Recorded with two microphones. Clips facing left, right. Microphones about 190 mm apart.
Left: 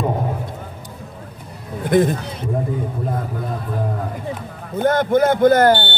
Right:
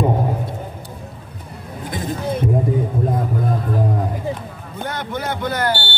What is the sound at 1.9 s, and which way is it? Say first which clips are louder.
Speech: left 11 dB; 55° left (ahead or behind).